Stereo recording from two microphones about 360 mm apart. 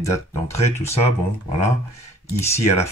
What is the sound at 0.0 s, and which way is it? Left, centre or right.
Speech, centre.